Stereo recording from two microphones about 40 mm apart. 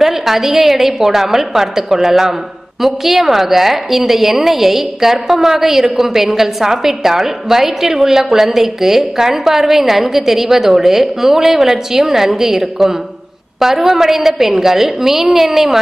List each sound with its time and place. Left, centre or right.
0.0 s a woman's voice: centre